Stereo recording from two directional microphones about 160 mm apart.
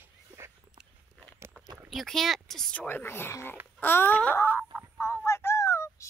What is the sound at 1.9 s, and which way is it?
Speech, centre (ahead or behind).